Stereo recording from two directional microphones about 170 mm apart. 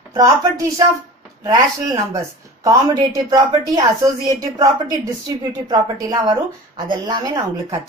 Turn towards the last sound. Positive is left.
turn(degrees=-20)  # may be behind; listen again after turning